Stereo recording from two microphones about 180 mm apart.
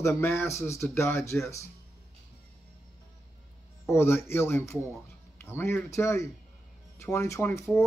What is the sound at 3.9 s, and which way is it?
Speech, 15° left (ahead or behind).